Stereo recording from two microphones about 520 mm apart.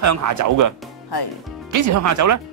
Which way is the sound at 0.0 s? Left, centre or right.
Right.